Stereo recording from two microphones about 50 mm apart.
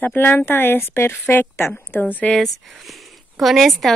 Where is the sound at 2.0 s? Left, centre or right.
Left.